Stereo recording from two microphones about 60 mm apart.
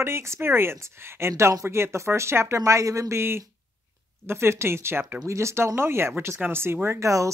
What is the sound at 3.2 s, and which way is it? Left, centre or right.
Speech, right.